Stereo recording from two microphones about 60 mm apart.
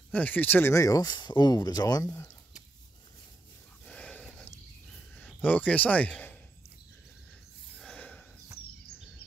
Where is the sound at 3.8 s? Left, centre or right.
Centre.